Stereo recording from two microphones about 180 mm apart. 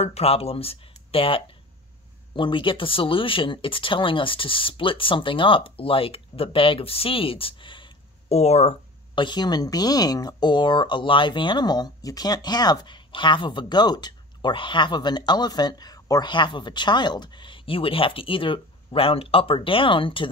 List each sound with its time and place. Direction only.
0.0 s speech: 35° left (ahead or behind)